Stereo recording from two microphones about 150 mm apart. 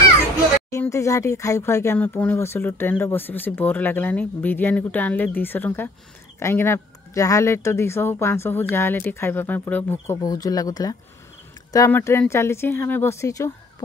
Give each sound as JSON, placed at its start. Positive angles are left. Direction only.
{"t": 0.7, "sound": "speech", "side_deg": 20}